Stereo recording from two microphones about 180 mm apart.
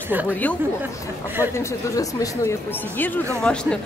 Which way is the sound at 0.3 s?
10° left (ahead or behind).